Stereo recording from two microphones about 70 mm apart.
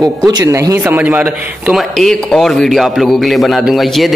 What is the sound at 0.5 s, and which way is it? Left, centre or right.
Speech, right.